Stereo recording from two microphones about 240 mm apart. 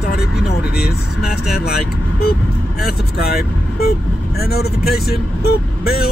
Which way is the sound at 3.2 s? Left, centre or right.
Left.